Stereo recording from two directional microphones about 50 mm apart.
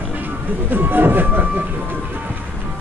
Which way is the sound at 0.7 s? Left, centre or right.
Right.